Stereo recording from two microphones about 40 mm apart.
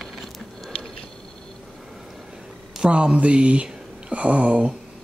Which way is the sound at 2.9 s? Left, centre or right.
Right.